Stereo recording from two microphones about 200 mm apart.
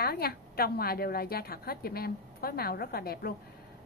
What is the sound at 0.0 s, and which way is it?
A woman's voice, 50° left (ahead or behind).